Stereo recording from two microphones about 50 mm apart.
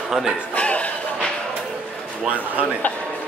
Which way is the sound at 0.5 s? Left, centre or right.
Left.